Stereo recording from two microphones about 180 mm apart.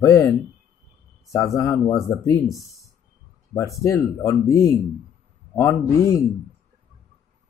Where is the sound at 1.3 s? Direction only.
15° left (ahead or behind).